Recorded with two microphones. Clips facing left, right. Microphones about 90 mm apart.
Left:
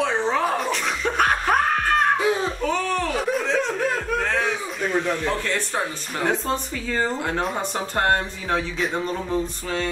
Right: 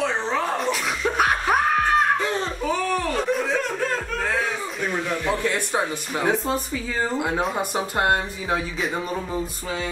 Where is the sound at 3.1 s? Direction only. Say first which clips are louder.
Even; 5° left (ahead or behind).